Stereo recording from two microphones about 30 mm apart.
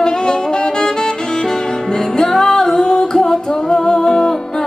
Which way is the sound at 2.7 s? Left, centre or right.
Left.